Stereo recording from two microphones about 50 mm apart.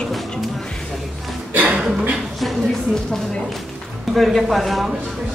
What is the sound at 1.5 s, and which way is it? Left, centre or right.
Music, right.